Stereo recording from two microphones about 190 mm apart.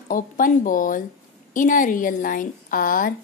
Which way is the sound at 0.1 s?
45° left (ahead or behind).